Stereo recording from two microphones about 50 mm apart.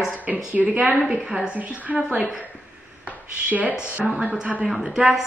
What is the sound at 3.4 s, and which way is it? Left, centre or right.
Speech, right.